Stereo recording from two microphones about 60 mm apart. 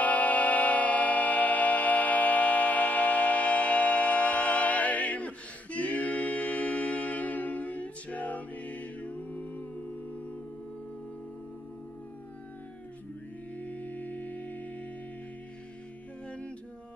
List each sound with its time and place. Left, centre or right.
0.0 s music: left
13.6 s music: left
16.3 s music: centre